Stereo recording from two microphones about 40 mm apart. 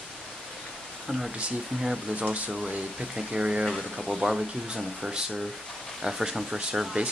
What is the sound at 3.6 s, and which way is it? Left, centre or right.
Speech, centre.